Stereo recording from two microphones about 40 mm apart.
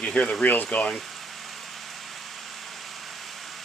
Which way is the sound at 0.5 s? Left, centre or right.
Left.